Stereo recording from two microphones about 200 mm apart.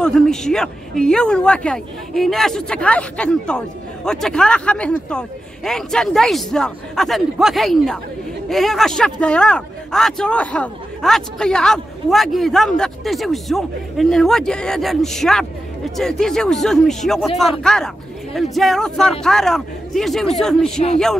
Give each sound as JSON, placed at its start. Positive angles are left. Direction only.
{"t": 0.0, "sound": "a man's voice", "side_deg": 5}